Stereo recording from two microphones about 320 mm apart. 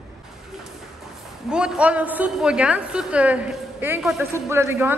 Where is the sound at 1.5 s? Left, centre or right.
Centre.